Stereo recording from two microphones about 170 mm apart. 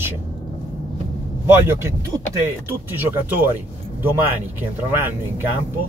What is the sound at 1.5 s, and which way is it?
Speech, 15° right (ahead or behind).